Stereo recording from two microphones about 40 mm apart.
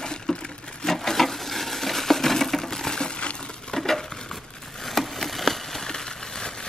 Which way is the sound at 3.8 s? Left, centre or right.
Centre.